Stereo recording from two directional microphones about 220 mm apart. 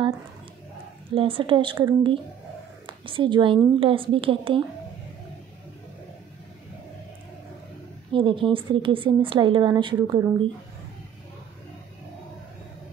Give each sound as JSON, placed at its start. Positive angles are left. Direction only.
{"t": 1.1, "sound": "a woman's voice", "side_deg": -25}
{"t": 8.1, "sound": "a woman's voice", "side_deg": -25}